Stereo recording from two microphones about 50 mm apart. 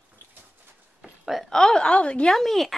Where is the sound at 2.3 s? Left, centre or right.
Centre.